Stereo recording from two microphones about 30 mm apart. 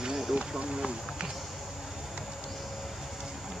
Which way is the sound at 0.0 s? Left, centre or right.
Right.